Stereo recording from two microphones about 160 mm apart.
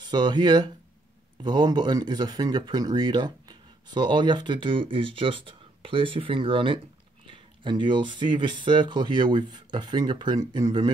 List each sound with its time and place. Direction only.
0.0 s speech: 25° right (ahead or behind)